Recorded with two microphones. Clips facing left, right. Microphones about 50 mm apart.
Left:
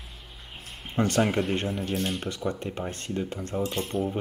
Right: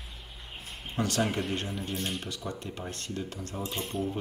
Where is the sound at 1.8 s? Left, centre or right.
Left.